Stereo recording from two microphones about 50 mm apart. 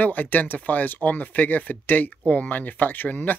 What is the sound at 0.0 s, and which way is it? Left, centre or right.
Speech, left.